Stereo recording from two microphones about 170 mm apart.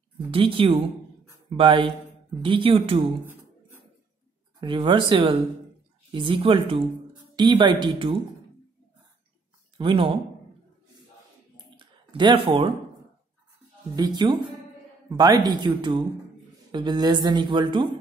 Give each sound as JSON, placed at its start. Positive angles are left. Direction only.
{"t": 0.3, "sound": "speech", "side_deg": -30}
{"t": 4.6, "sound": "speech", "side_deg": -30}
{"t": 9.8, "sound": "speech", "side_deg": -30}
{"t": 11.5, "sound": "a sound", "side_deg": -25}
{"t": 13.9, "sound": "speech", "side_deg": -25}